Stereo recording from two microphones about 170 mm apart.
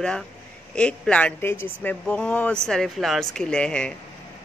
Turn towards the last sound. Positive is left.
turn(degrees=5)  # may be behind; listen again after turning